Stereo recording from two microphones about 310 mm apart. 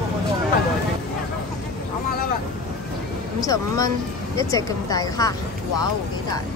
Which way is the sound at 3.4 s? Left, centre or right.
Centre.